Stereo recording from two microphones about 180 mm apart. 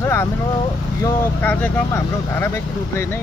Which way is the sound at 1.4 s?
10° left (ahead or behind).